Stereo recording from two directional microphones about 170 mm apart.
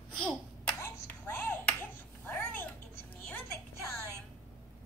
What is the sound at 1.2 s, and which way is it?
Clapping, 15° left (ahead or behind).